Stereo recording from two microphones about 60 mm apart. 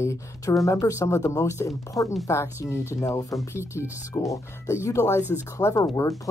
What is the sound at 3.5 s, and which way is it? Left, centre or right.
Speech, left.